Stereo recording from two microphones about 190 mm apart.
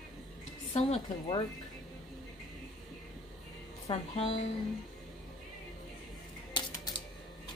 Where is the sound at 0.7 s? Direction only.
30° left (ahead or behind).